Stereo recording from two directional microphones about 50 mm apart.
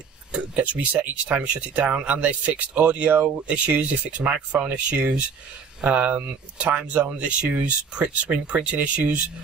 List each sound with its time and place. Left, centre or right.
0.6 s speech: right